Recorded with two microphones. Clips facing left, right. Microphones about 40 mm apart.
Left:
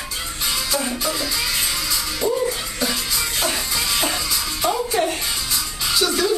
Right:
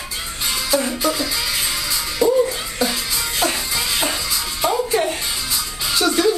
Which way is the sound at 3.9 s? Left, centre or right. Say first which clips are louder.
Even; centre.